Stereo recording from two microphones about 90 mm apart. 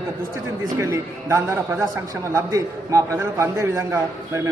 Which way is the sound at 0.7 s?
30° right (ahead or behind).